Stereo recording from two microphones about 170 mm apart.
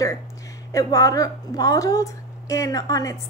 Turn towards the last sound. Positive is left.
turn(degrees=20)  # may be behind; listen again after turning